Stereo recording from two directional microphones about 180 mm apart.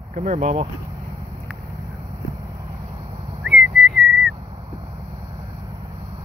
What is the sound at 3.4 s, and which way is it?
Whistling, centre (ahead or behind).